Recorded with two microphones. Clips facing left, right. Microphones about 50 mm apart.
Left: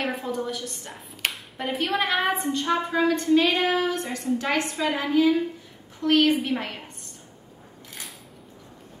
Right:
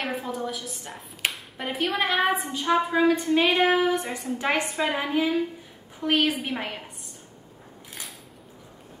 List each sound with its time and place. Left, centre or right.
0.0 s a woman's voice: centre